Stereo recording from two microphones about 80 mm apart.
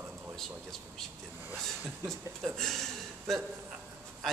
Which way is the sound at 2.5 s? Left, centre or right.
Centre.